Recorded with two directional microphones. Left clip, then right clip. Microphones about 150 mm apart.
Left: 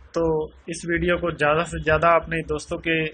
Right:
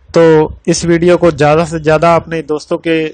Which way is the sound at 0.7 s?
80° right.